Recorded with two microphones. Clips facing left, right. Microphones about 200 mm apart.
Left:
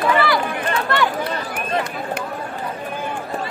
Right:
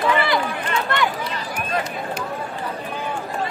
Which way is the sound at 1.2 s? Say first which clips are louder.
Left 3 dB; 55° left (ahead or behind).